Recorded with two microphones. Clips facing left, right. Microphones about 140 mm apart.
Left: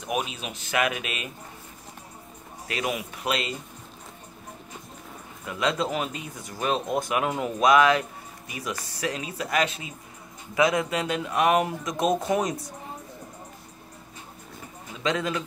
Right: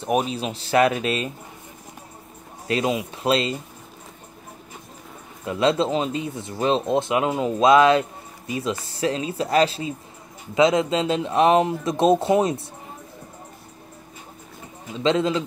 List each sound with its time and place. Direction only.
0.0 s speech: 35° right (ahead or behind)
2.7 s speech: 25° right (ahead or behind)
5.4 s speech: 30° right (ahead or behind)
15.0 s speech: 25° right (ahead or behind)